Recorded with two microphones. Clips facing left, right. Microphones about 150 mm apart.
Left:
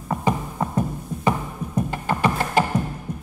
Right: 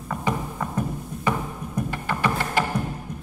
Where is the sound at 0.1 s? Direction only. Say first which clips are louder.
Left 3 dB; 25° left (ahead or behind).